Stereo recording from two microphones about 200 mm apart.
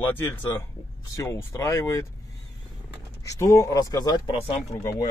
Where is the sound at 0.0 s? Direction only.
10° left (ahead or behind).